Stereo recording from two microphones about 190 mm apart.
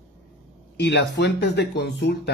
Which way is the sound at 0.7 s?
60° left (ahead or behind).